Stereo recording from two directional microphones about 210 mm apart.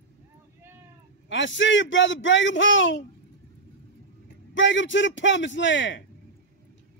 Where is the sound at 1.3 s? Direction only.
60° left (ahead or behind).